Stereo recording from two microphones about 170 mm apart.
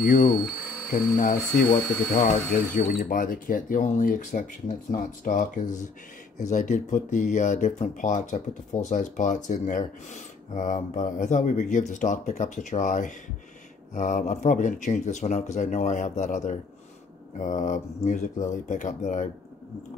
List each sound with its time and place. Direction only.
0.0 s speech: 55° left (ahead or behind)